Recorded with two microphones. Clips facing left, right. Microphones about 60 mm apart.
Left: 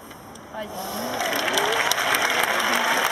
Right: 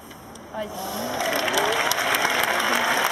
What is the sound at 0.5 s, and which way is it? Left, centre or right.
Speech, centre.